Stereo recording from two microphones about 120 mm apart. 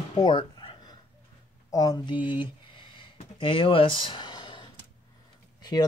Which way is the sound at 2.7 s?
45° left (ahead or behind).